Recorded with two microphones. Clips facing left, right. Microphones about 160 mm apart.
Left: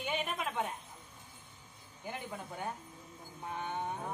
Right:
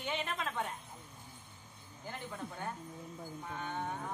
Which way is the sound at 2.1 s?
15° left (ahead or behind).